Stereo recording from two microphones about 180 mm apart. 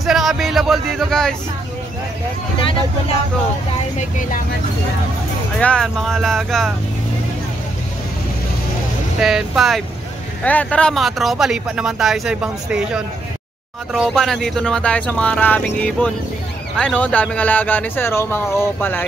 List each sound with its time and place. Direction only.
0.0 s a sound: centre (ahead or behind)
4.0 s speech: 45° left (ahead or behind)
5.6 s speech: 5° left (ahead or behind)
9.2 s speech: 5° right (ahead or behind)